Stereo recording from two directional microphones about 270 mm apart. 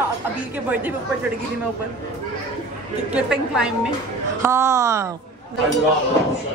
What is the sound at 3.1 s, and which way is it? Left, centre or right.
A man's voice, centre.